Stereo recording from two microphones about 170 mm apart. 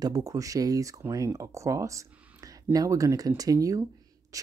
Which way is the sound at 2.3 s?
20° right (ahead or behind).